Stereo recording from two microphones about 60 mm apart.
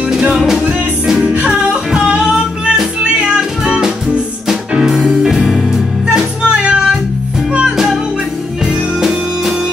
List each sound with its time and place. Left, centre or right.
0.1 s music: centre
1.2 s music: right; by 8.0 s centre
9.0 s music: centre